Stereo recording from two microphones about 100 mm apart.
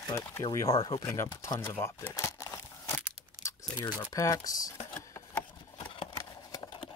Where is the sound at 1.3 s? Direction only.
40° left (ahead or behind).